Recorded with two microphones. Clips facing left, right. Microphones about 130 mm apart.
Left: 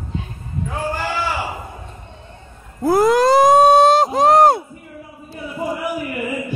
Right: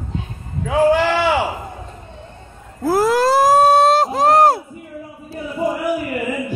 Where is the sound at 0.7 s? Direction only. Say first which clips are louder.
Right 11 dB; 80° right.